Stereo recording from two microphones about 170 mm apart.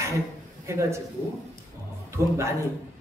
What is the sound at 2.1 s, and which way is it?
Speech, 15° right (ahead or behind).